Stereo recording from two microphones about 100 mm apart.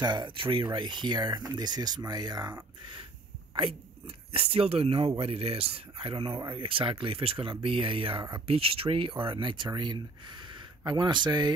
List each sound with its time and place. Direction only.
0.0 s speech: 50° right (ahead or behind)
4.3 s speech: 75° right (ahead or behind); by 11.5 s 45° right (ahead or behind)